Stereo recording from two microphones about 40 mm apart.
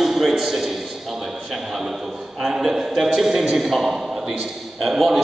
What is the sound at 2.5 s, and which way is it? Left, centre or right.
Speech, centre.